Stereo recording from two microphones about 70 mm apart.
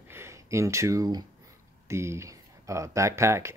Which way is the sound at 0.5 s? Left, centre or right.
Right.